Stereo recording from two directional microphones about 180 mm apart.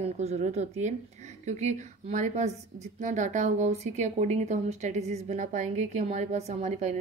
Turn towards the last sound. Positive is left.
turn(degrees=-40)  # may be behind; listen again after turning